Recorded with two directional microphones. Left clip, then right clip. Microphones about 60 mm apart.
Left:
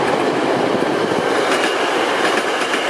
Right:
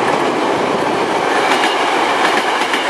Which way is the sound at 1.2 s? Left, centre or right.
Right.